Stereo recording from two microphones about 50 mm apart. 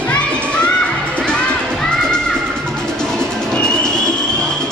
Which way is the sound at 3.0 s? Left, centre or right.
Centre.